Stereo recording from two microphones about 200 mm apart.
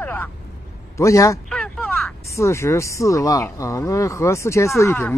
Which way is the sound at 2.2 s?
15° left (ahead or behind).